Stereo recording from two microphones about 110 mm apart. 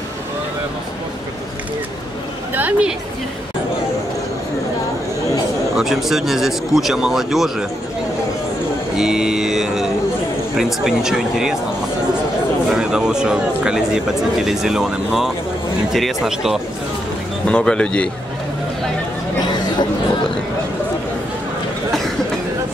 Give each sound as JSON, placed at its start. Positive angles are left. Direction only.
{"t": 2.5, "sound": "a sound", "side_deg": -15}
{"t": 5.8, "sound": "speech", "side_deg": 0}
{"t": 8.9, "sound": "speech", "side_deg": -5}
{"t": 12.6, "sound": "speech", "side_deg": -5}
{"t": 17.5, "sound": "speech", "side_deg": 10}
{"t": 19.4, "sound": "chatter", "side_deg": 40}